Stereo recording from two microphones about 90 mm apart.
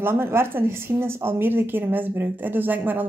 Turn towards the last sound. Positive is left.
turn(degrees=-20)  # may be behind; listen again after turning